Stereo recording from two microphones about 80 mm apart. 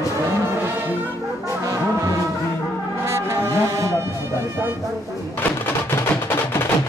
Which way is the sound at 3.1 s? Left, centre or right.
Right.